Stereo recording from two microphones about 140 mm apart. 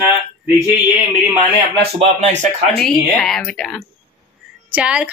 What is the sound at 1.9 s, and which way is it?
Speech, 50° right (ahead or behind).